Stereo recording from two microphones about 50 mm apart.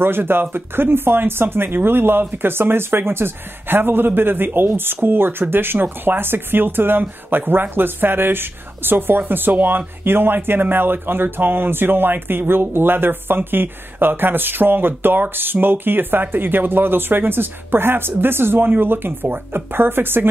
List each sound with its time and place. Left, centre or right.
0.0 s speech: right